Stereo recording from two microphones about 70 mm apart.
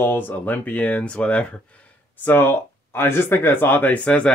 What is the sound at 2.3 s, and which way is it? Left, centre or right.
Speech, left.